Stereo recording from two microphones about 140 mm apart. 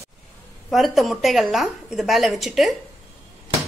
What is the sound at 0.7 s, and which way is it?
A woman's voice, centre (ahead or behind).